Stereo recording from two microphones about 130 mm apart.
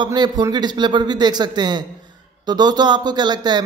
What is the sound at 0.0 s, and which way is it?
Speech, 35° right (ahead or behind).